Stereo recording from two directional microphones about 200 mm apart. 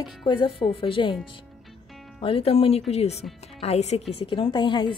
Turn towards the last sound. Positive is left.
turn(degrees=25)  # may be behind; listen again after turning